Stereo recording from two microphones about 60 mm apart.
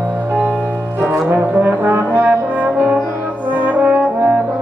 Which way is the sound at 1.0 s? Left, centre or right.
Right.